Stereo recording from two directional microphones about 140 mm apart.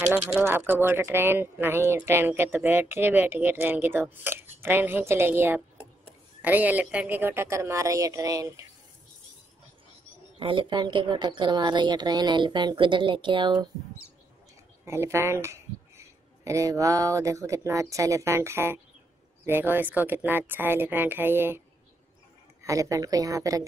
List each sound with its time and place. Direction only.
0.0 s a woman's voice: 10° right (ahead or behind)
10.4 s a woman's voice: 40° right (ahead or behind)
14.9 s speech: 20° right (ahead or behind)
22.6 s a woman's voice: 25° right (ahead or behind)